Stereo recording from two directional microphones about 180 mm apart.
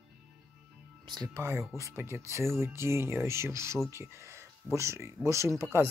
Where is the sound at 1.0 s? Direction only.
20° right (ahead or behind).